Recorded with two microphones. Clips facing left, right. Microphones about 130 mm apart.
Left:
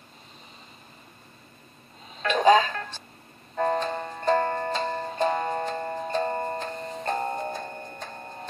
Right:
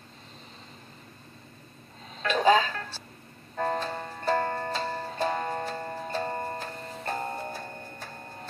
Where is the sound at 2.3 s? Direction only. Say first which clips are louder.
Left 3 dB; 15° left (ahead or behind).